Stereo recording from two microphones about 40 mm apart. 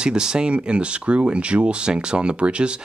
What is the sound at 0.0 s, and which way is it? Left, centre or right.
Speech, centre.